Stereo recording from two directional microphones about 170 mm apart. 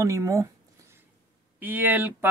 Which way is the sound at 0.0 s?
20° right (ahead or behind).